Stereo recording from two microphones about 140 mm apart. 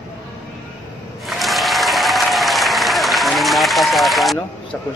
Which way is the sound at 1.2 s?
Centre (ahead or behind).